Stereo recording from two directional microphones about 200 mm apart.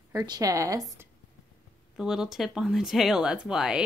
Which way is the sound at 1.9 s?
5° right (ahead or behind).